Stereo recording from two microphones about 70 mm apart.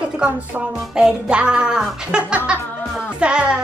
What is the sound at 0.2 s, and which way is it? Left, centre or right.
Speech, centre.